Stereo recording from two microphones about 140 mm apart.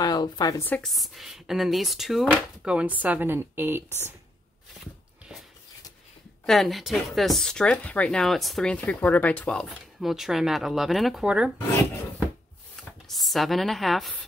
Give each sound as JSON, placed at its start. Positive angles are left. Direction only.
{"t": 0.0, "sound": "a woman's voice", "side_deg": 30}
{"t": 0.7, "sound": "speech", "side_deg": 5}
{"t": 6.4, "sound": "speech", "side_deg": 0}
{"t": 13.1, "sound": "speech", "side_deg": 0}